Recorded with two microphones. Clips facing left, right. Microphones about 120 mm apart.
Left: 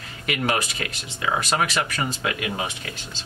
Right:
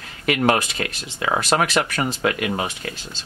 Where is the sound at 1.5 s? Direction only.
50° right (ahead or behind).